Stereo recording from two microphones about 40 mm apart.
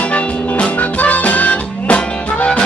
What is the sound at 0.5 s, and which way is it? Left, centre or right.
Music, left.